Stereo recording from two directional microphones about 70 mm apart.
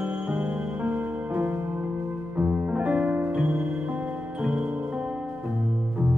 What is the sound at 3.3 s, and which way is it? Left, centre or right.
Music, centre.